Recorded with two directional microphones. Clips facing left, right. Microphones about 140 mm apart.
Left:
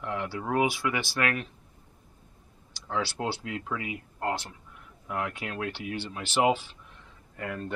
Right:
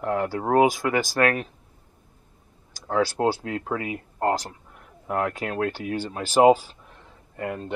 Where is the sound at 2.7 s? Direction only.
45° right (ahead or behind); by 7.7 s 25° right (ahead or behind).